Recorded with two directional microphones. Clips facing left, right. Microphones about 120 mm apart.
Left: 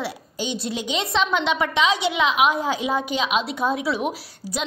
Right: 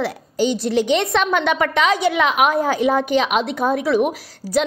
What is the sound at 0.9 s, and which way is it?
A woman's voice, 55° right (ahead or behind).